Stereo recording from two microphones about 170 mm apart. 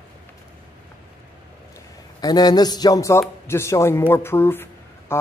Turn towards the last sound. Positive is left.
turn(degrees=15)  # may be behind; listen again after turning